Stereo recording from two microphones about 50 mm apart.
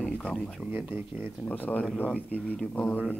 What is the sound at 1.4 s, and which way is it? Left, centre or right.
Speech, left.